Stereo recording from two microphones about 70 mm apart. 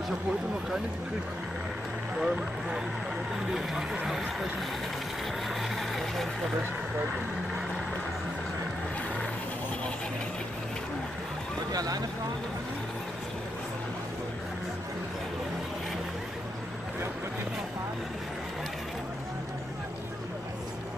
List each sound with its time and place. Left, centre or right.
2.1 s speech: centre
5.5 s vehicle: centre
11.7 s speech: right